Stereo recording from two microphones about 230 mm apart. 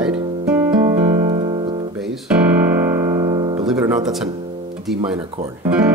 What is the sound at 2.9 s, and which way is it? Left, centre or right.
Music, centre.